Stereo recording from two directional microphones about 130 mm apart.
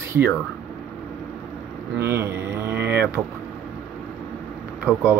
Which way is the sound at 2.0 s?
20° right (ahead or behind).